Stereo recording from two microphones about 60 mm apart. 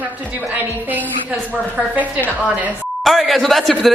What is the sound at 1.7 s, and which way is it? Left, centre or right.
Speech, right.